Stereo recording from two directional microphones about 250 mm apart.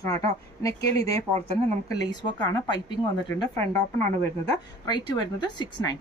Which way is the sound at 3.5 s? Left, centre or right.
Right.